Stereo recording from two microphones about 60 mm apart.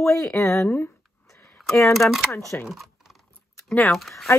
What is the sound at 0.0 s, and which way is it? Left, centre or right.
Speech, left.